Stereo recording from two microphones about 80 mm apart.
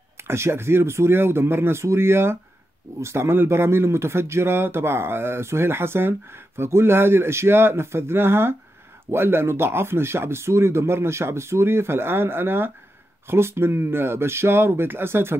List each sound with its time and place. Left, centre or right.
0.2 s speech: right